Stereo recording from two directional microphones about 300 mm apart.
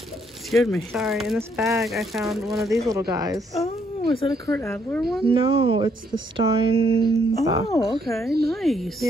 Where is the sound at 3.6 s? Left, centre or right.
Centre.